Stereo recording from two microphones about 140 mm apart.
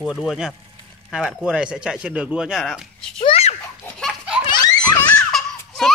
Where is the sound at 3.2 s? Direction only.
50° left (ahead or behind).